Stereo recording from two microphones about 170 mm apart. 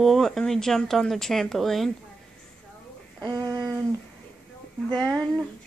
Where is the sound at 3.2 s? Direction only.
20° right (ahead or behind).